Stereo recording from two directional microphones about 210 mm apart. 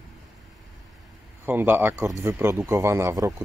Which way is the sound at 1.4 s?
10° right (ahead or behind).